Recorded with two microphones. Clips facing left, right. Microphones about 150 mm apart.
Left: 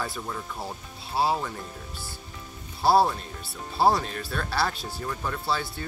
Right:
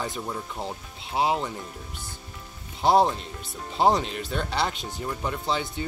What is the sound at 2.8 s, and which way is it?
Speech, 20° right (ahead or behind).